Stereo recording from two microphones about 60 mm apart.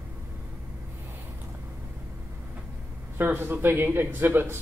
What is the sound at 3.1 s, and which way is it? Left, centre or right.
Speech, right.